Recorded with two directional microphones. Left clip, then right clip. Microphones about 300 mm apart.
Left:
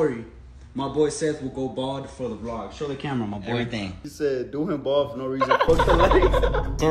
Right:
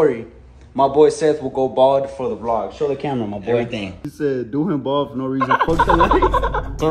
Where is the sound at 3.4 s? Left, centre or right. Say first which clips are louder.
Right 11 dB; centre.